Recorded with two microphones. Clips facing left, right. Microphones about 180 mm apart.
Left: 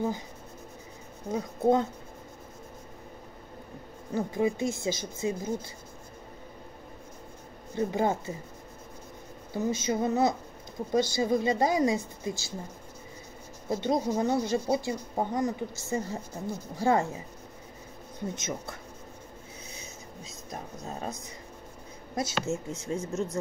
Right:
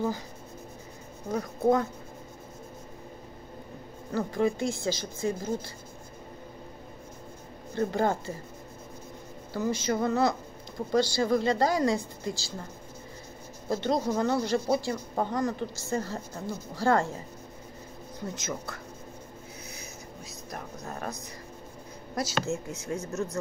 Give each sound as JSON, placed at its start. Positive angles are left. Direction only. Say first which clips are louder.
{"t": 1.3, "sound": "speech", "louder": "even", "side_deg": 25}
{"t": 4.1, "sound": "speech", "louder": "right 1 dB", "side_deg": 20}
{"t": 7.7, "sound": "speech", "louder": "even", "side_deg": 15}
{"t": 9.5, "sound": "speech", "louder": "even", "side_deg": 20}
{"t": 13.7, "sound": "speech", "louder": "even", "side_deg": 20}
{"t": 18.4, "sound": "speech", "louder": "even", "side_deg": 25}
{"t": 20.5, "sound": "speech", "louder": "even", "side_deg": 25}